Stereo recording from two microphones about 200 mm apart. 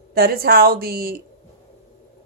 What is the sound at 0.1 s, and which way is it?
Speech, 50° right (ahead or behind).